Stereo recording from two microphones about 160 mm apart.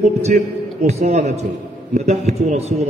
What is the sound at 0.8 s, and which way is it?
A man's voice, 45° right (ahead or behind).